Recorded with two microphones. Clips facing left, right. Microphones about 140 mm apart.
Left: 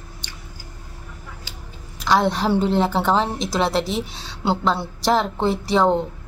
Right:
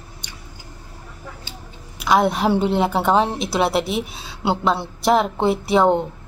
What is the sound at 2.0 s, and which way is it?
A woman's voice, 10° right (ahead or behind).